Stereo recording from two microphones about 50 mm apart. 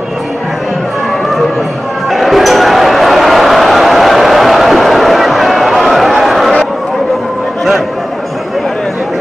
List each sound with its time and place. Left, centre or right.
2.0 s basketball bounce: centre